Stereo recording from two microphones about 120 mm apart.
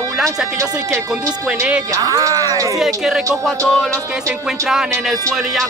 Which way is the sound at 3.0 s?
5° right (ahead or behind).